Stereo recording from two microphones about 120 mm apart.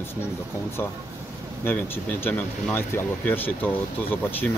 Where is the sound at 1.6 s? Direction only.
15° left (ahead or behind).